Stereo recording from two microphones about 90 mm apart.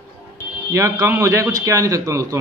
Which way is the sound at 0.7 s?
35° right (ahead or behind).